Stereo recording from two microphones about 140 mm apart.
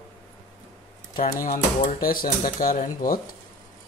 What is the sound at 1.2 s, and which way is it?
Speech, 80° left.